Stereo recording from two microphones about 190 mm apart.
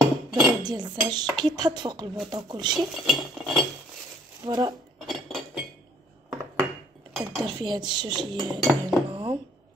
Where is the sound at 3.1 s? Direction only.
Centre (ahead or behind).